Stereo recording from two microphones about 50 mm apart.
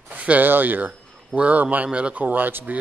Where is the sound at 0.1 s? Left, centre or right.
Right.